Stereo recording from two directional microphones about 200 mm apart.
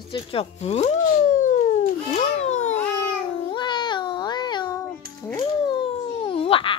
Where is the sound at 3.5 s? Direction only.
20° left (ahead or behind).